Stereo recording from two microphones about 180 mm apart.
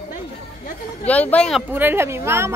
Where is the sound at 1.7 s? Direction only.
10° right (ahead or behind).